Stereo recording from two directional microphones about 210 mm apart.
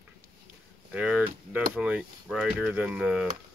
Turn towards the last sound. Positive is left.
turn(degrees=-5)  # may be behind; listen again after turning